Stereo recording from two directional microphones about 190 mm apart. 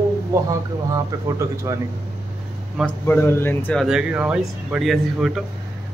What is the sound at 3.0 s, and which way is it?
Speech, 10° left (ahead or behind).